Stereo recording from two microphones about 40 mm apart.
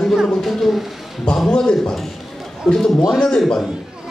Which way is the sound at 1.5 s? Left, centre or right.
Centre.